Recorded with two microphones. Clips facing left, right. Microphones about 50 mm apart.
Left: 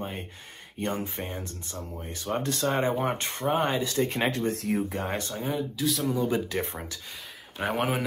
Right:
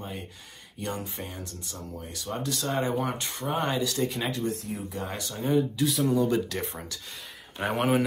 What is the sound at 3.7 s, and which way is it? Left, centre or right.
Speech, left.